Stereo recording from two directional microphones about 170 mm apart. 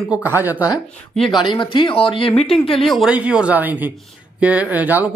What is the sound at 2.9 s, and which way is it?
Speech, 5° right (ahead or behind).